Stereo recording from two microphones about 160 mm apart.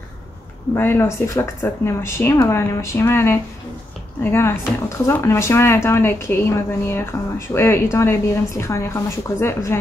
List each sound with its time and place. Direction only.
0.7 s a woman's voice: 15° left (ahead or behind)